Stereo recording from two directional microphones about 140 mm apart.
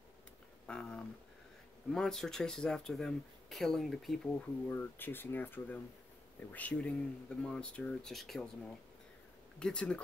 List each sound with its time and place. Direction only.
0.7 s a sound: 5° left (ahead or behind)
1.9 s speech: 5° left (ahead or behind)
4.6 s speech: 15° left (ahead or behind)
9.6 s speech: 5° left (ahead or behind)